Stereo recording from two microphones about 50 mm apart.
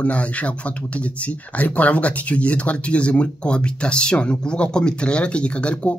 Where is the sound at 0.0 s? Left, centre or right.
Left.